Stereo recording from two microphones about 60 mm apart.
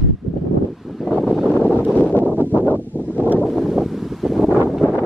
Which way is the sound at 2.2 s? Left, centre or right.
Right.